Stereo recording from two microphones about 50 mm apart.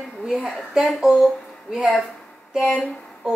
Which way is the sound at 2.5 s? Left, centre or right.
Centre.